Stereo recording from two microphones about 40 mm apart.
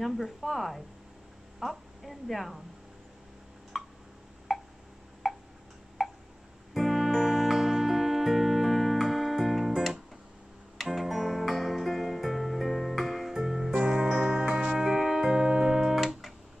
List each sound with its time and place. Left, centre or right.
0.0 s a woman's voice: centre
3.7 s a sound: centre
5.2 s tick-tock: centre
6.0 s a sound: centre
6.7 s music: centre
13.3 s music: centre
13.7 s music: centre